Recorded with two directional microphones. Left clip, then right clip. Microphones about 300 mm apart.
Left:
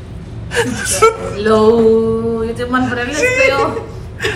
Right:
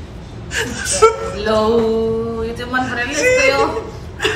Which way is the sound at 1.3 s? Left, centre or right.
Centre.